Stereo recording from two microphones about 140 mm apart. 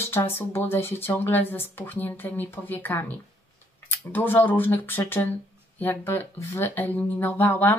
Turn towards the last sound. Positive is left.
turn(degrees=15)  # may be behind; listen again after turning